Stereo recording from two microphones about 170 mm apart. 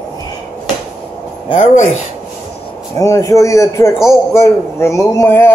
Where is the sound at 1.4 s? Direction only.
40° left (ahead or behind).